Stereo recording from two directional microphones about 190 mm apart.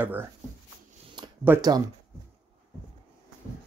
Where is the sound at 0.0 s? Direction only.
10° right (ahead or behind).